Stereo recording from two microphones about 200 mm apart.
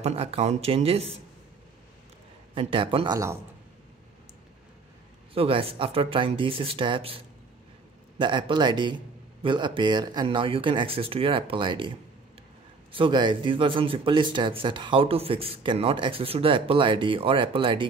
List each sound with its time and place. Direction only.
0.0 s speech: 30° right (ahead or behind)
2.5 s speech: 25° right (ahead or behind)
5.3 s speech: 30° right (ahead or behind)
12.9 s speech: 25° right (ahead or behind)